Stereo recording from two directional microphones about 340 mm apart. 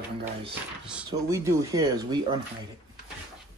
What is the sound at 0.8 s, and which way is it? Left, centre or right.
Speech, centre.